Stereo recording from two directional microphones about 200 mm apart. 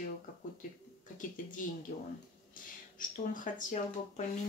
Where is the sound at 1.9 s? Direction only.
40° left (ahead or behind).